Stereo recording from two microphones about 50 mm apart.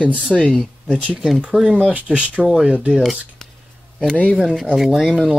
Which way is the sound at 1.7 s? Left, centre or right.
Right.